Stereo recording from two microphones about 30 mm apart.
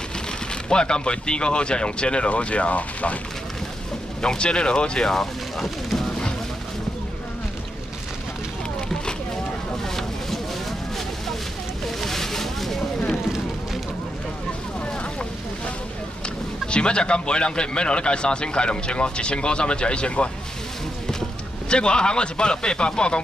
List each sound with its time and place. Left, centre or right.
0.7 s speech: left
2.2 s speech: left
4.2 s speech: left
5.1 s speech: centre
12.0 s a sound: centre
16.7 s speech: left
21.6 s speech: left